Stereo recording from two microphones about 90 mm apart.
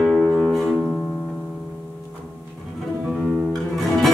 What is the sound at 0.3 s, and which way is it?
Music, 10° left (ahead or behind).